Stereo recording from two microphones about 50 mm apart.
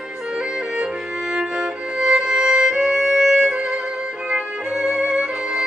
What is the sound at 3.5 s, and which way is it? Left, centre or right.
Music, right.